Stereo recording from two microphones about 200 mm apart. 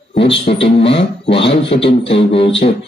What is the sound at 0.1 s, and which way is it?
Speech, 30° left (ahead or behind).